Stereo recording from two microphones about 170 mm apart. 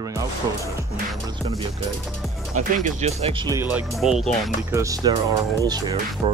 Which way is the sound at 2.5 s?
45° right (ahead or behind).